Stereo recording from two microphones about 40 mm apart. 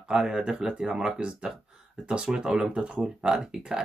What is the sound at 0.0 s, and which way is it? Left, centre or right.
Speech, right.